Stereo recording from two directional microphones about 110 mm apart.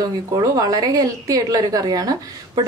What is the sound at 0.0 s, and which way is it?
A woman's voice, 35° right (ahead or behind).